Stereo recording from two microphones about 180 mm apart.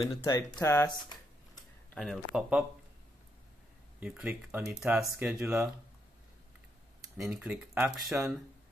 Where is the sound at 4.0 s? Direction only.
5° right (ahead or behind).